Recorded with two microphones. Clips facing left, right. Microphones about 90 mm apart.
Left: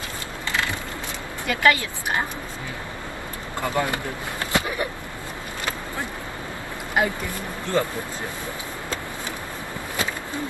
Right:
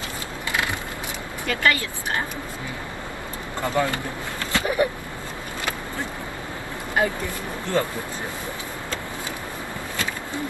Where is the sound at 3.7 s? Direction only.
20° left (ahead or behind).